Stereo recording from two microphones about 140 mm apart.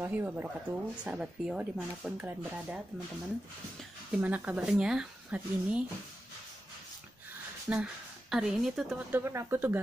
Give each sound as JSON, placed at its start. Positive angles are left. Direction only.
{"t": 0.0, "sound": "speech", "side_deg": -15}
{"t": 4.2, "sound": "speech", "side_deg": -10}
{"t": 7.7, "sound": "a woman's voice", "side_deg": -5}
{"t": 9.1, "sound": "speech", "side_deg": -20}